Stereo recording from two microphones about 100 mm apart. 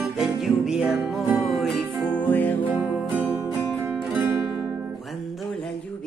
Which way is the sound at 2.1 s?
15° left (ahead or behind).